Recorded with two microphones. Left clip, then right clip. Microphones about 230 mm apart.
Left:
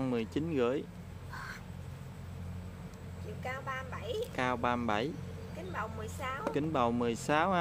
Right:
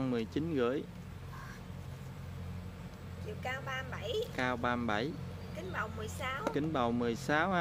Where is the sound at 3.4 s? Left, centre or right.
Centre.